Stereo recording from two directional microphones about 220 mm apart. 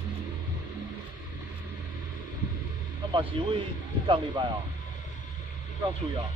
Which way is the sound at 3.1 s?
25° right (ahead or behind).